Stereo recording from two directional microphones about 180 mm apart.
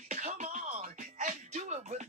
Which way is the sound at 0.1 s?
40° right (ahead or behind).